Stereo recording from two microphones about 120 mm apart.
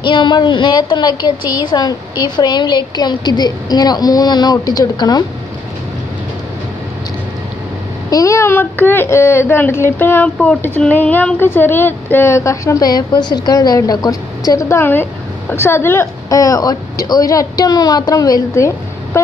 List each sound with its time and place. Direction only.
0.0 s a woman's voice: 40° left (ahead or behind)
8.1 s a woman's voice: 25° left (ahead or behind)